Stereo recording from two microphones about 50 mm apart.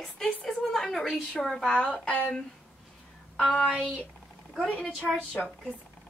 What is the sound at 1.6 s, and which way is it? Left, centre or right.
Speech, centre.